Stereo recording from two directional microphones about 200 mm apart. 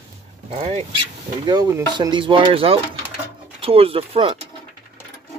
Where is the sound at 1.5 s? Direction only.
20° right (ahead or behind).